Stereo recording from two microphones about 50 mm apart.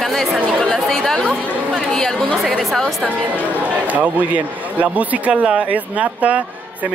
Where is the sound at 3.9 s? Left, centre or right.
Right.